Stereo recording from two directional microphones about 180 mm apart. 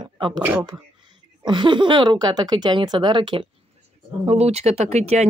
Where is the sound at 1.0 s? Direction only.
25° right (ahead or behind).